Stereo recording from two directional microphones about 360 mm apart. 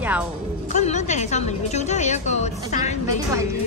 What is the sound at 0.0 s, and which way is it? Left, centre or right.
Speech, centre.